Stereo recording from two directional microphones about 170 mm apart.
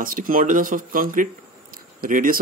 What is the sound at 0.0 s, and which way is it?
Speech, 55° right (ahead or behind).